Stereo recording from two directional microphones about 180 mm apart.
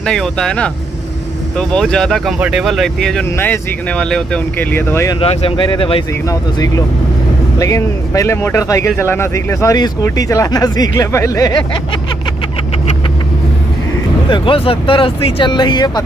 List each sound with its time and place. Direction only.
0.0 s speech: 5° left (ahead or behind)
5.2 s speech: 30° left (ahead or behind)
7.5 s speech: 15° left (ahead or behind)
14.3 s speech: 30° left (ahead or behind)